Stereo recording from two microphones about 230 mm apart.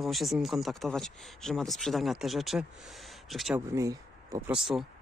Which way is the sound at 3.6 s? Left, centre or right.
Centre.